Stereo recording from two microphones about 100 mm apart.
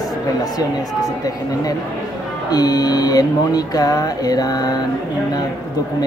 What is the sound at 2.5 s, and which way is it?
Music, 40° left (ahead or behind).